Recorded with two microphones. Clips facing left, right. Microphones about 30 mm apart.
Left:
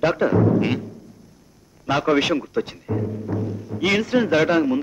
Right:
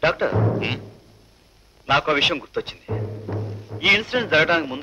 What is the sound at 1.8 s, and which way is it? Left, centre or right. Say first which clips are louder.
Speech: right 1 dB; right.